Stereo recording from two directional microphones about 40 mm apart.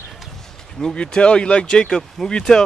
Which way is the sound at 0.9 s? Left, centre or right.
Left.